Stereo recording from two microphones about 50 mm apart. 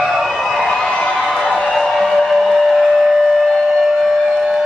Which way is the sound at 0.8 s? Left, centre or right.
Centre.